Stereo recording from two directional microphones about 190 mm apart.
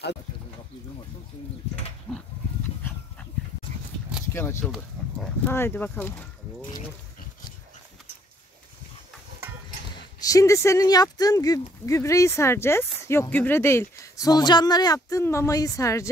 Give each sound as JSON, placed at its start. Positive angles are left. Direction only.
{"t": 2.1, "sound": "speech", "side_deg": 10}
{"t": 2.9, "sound": "dog", "side_deg": 10}
{"t": 4.3, "sound": "speech", "side_deg": 15}
{"t": 4.6, "sound": "speech", "side_deg": 0}
{"t": 10.2, "sound": "speech", "side_deg": 15}